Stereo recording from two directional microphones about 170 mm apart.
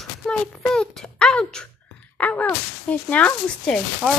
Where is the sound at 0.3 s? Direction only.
Centre (ahead or behind).